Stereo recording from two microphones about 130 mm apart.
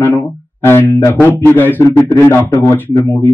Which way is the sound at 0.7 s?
15° left (ahead or behind).